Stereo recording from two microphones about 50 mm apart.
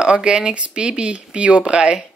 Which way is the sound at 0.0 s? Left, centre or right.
Centre.